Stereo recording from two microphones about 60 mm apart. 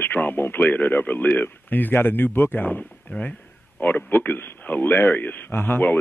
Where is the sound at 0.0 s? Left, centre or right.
Left.